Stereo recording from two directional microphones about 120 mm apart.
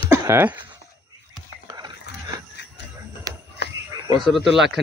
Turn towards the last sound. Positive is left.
turn(degrees=-5)  # may be behind; listen again after turning